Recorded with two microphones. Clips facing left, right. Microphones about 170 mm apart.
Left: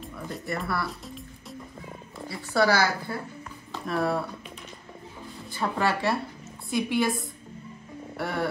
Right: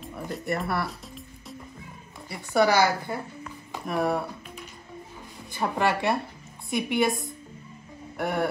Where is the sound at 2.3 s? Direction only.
20° right (ahead or behind).